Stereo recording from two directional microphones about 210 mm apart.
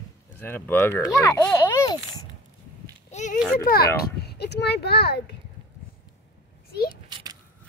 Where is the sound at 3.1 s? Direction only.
35° left (ahead or behind).